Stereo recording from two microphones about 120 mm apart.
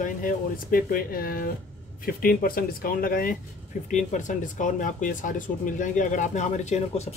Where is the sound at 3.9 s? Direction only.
90° left.